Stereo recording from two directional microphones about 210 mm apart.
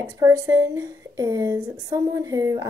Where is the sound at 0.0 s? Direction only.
15° right (ahead or behind).